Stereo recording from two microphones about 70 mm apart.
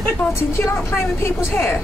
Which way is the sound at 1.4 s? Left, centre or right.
Left.